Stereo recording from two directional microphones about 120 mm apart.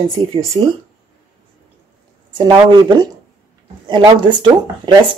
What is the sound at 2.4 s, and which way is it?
Speech, 40° right (ahead or behind).